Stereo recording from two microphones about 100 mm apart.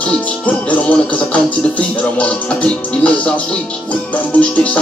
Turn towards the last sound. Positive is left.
turn(degrees=15)  # may be behind; listen again after turning